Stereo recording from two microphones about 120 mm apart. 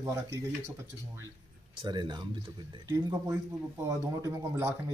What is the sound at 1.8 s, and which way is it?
Speech, 40° right (ahead or behind).